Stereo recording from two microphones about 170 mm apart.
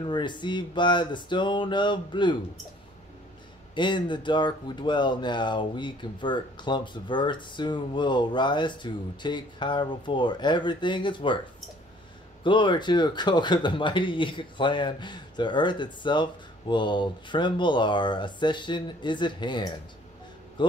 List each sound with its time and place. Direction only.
0.0 s speech: 25° left (ahead or behind)
3.7 s speech: 25° left (ahead or behind)
12.4 s speech: 30° left (ahead or behind)